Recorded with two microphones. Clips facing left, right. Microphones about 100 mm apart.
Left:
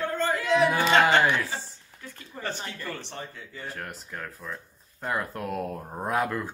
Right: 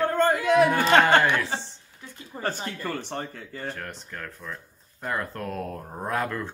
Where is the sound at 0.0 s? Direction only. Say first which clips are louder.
Right 5 dB; 50° right (ahead or behind).